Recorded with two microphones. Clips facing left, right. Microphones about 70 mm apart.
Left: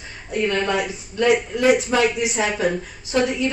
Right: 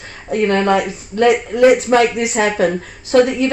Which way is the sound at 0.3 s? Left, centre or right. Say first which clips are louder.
Right 7 dB; right.